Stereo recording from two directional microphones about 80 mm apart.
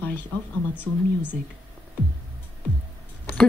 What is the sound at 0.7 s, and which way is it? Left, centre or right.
Speech, centre.